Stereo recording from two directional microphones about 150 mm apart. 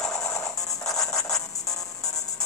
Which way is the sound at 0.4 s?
20° left (ahead or behind).